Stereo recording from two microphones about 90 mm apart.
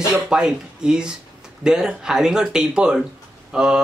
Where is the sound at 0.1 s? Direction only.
5° right (ahead or behind).